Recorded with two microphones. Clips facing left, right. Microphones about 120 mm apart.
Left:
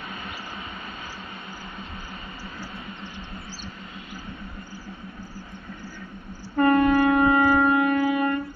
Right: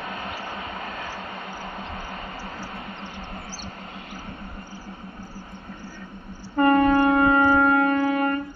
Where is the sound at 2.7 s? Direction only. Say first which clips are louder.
Right 2 dB; 50° right (ahead or behind).